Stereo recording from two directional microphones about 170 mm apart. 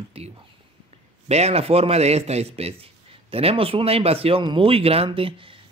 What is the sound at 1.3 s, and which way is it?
A man's voice, 40° right (ahead or behind).